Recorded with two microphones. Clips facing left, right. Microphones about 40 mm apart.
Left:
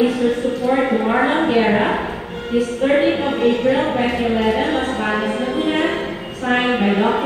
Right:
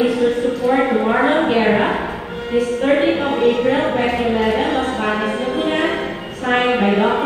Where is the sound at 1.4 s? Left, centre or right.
Right.